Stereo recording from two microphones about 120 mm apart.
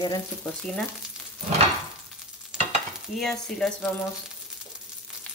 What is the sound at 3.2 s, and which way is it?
Speech, 5° left (ahead or behind).